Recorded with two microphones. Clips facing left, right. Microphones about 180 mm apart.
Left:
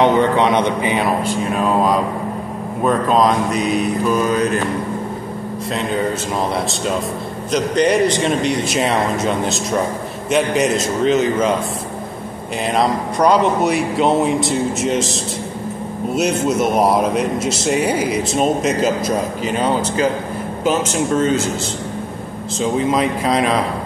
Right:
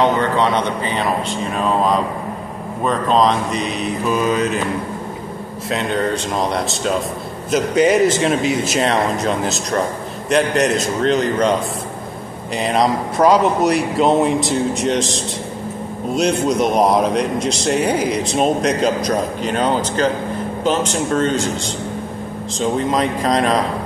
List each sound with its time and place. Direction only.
0.0 s a man's voice: 15° left (ahead or behind)
1.5 s speech: 5° left (ahead or behind)
5.7 s speech: centre (ahead or behind)
12.6 s speech: centre (ahead or behind)
16.2 s speech: 5° left (ahead or behind)
20.9 s a man's voice: 5° left (ahead or behind)
22.6 s speech: 5° left (ahead or behind)